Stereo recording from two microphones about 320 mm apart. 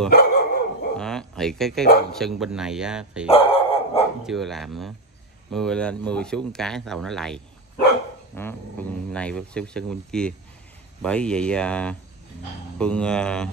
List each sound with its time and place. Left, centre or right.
0.1 s dog: left
0.9 s a sound: centre
2.1 s speech: centre
3.3 s dog: centre
4.3 s speech: centre